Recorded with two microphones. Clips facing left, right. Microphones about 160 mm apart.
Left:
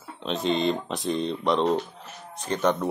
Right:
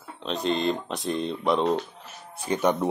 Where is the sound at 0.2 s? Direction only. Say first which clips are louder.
Left 1 dB; centre (ahead or behind).